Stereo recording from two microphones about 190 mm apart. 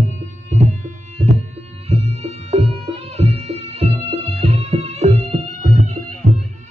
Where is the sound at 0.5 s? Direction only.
40° right (ahead or behind).